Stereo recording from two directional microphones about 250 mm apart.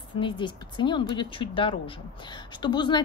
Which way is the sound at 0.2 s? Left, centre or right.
Centre.